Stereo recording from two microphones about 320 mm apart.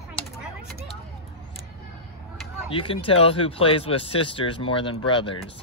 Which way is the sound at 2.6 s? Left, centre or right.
Centre.